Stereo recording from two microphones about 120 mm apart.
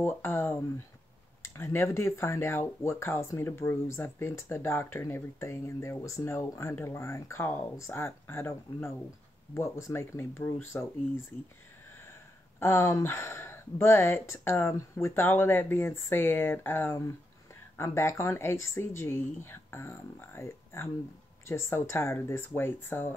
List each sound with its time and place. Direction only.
0.0 s speech: 20° left (ahead or behind)
11.9 s speech: 20° left (ahead or behind)